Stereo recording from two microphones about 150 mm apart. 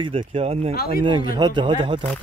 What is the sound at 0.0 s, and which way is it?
Speech, 35° right (ahead or behind).